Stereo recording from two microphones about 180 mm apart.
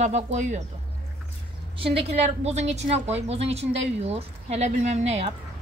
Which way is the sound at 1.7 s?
30° right (ahead or behind).